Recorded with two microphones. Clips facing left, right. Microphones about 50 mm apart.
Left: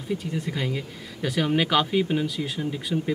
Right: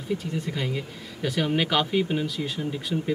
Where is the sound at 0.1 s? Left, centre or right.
Centre.